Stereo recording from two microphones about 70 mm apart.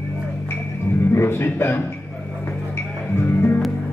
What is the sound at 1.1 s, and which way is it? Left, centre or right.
Music, left.